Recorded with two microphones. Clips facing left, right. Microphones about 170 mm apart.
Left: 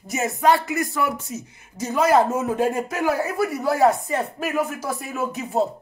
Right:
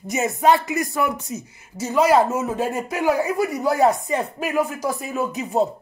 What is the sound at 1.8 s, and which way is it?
A woman's voice, 10° right (ahead or behind).